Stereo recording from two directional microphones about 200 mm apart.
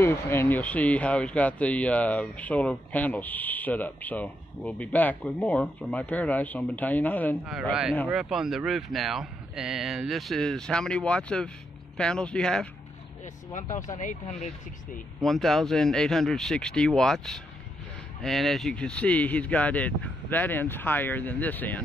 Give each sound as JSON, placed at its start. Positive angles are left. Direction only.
{"t": 0.0, "sound": "speech", "side_deg": 15}
{"t": 7.6, "sound": "speech", "side_deg": 0}
{"t": 13.5, "sound": "speech", "side_deg": 40}
{"t": 15.1, "sound": "speech", "side_deg": 0}